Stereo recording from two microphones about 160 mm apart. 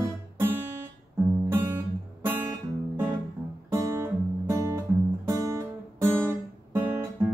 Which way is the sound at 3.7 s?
15° right (ahead or behind).